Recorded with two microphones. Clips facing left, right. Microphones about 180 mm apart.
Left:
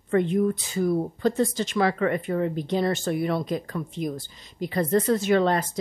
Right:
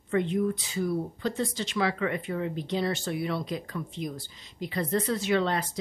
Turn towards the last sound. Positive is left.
turn(degrees=45)  # may be behind; listen again after turning